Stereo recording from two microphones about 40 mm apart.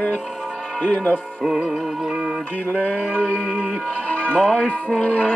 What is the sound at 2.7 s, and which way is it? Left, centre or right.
Music, right.